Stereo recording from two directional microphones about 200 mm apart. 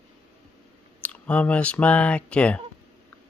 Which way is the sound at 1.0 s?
5° left (ahead or behind).